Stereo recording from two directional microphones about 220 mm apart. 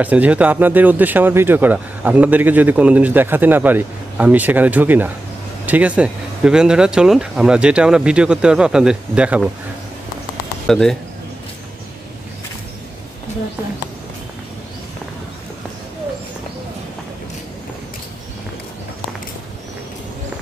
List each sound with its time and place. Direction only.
0.0 s speech: 5° right (ahead or behind)
10.7 s speech: centre (ahead or behind)